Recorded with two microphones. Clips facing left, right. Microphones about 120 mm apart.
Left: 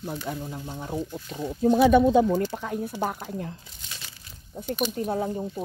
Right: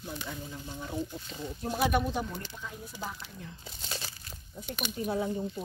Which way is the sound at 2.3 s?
80° left.